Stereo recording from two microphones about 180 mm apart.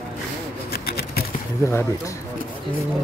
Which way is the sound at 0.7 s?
60° left (ahead or behind).